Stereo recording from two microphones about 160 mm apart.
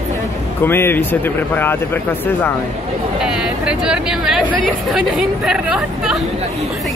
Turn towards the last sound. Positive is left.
turn(degrees=-5)  # may be behind; listen again after turning